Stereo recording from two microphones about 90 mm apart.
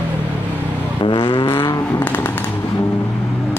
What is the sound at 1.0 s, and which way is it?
Vehicle, 70° left (ahead or behind).